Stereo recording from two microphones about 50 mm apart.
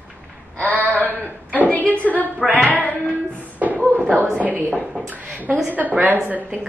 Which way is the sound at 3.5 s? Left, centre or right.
Right.